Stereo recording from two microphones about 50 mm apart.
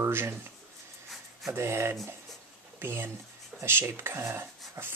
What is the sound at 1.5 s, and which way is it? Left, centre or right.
Speech, right.